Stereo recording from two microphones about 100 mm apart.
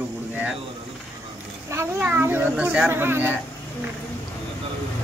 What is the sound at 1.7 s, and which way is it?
Speech, 20° right (ahead or behind).